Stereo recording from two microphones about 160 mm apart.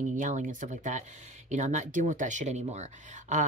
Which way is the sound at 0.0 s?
50° right (ahead or behind).